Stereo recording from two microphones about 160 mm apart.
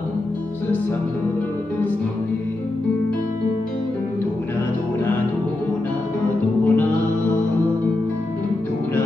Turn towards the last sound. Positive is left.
turn(degrees=10)  # may be behind; listen again after turning